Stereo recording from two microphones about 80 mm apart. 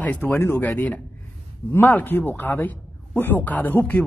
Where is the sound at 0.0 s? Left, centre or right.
Left.